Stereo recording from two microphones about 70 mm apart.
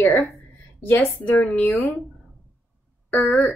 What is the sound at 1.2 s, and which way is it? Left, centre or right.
Speech, centre.